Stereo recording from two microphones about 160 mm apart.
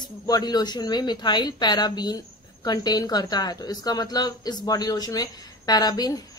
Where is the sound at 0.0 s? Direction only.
25° left (ahead or behind).